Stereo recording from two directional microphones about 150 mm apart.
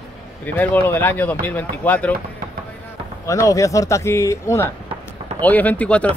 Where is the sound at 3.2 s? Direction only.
20° left (ahead or behind).